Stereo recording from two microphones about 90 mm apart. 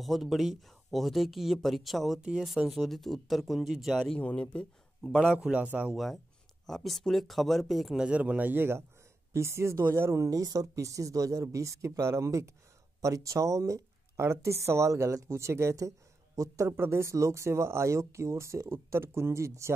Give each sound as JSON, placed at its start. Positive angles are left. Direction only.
{"t": 0.0, "sound": "speech", "side_deg": 0}
{"t": 4.0, "sound": "a man's voice", "side_deg": 15}
{"t": 5.4, "sound": "a man's voice", "side_deg": -15}
{"t": 6.6, "sound": "speech", "side_deg": 0}